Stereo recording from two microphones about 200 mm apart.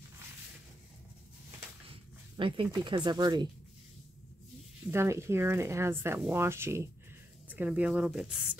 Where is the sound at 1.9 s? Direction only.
25° right (ahead or behind).